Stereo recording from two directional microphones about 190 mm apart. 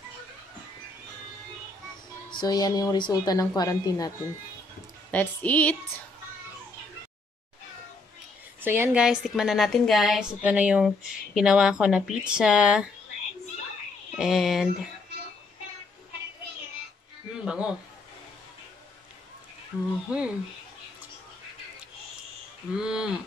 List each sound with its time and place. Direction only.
2.3 s a woman's voice: 20° left (ahead or behind)
5.1 s a woman's voice: 10° left (ahead or behind)
8.5 s a woman's voice: 10° right (ahead or behind)
14.1 s a woman's voice: centre (ahead or behind)
17.5 s a woman's voice: 5° right (ahead or behind)
20.1 s a woman's voice: 5° right (ahead or behind)
22.8 s a woman's voice: 5° right (ahead or behind)